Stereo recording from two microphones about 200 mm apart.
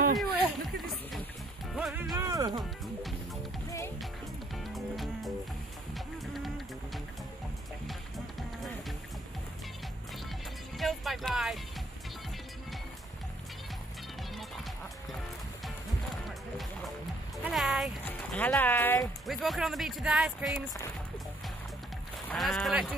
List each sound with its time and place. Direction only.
0.2 s a sound: centre (ahead or behind)
1.8 s music: centre (ahead or behind)
2.1 s music: 15° right (ahead or behind)
2.8 s music: centre (ahead or behind)
4.7 s music: centre (ahead or behind)
10.8 s music: centre (ahead or behind)
17.4 s music: centre (ahead or behind)
19.2 s speech: centre (ahead or behind)
22.3 s speech: centre (ahead or behind)